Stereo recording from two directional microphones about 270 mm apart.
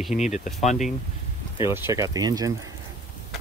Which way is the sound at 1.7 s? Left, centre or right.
Centre.